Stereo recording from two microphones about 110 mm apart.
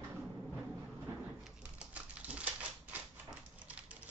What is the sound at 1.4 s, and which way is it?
Typewriter, 10° right (ahead or behind).